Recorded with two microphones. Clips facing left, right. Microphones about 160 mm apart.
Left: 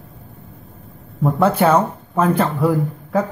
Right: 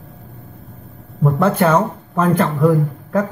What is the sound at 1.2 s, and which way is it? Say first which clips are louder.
Speech: even; 5° left (ahead or behind).